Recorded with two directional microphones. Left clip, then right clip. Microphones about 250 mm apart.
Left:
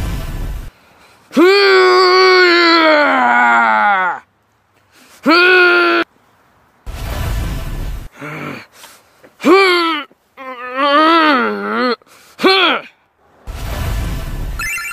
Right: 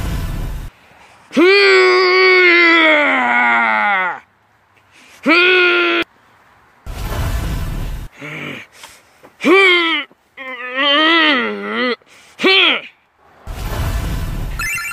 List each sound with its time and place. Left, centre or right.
0.0 s music: centre
1.3 s wail: centre
5.2 s groan: centre
7.0 s music: centre
8.1 s a sound: centre
9.4 s wail: centre
11.3 s a sound: centre
13.6 s music: centre